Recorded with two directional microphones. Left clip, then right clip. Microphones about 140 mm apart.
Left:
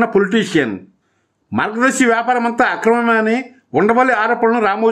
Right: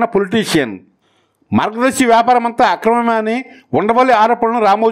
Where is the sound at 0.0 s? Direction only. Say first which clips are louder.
Even; 40° right (ahead or behind).